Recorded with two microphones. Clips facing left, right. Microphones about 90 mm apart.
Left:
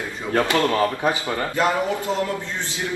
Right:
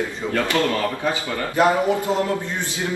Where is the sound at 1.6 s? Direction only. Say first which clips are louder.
Right 5 dB; 20° right (ahead or behind).